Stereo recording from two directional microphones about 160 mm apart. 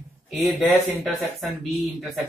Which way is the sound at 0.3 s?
Centre (ahead or behind).